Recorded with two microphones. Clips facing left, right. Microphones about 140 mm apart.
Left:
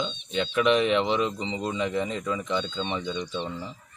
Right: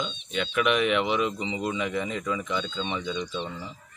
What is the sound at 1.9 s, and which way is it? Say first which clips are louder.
Speech: left 1 dB; 30° left (ahead or behind).